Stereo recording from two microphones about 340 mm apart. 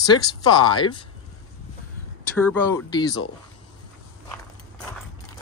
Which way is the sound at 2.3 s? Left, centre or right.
Centre.